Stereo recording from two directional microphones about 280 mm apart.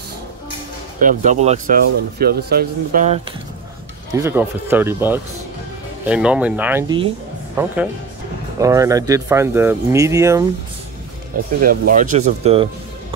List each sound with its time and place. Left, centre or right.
1.0 s speech: right
4.2 s speech: centre
11.6 s speech: right